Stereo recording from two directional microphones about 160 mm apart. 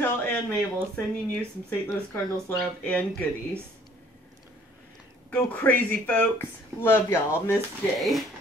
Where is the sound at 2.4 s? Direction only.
10° left (ahead or behind).